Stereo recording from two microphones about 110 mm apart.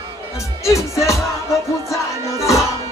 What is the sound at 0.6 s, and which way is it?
Music, 25° left (ahead or behind).